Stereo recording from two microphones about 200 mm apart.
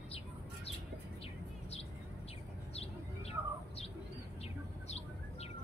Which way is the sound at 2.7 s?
30° left (ahead or behind).